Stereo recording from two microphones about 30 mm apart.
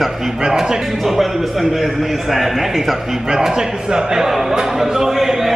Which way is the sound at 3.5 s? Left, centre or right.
Right.